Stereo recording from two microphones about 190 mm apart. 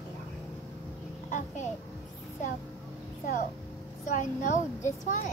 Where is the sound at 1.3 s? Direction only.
40° left (ahead or behind).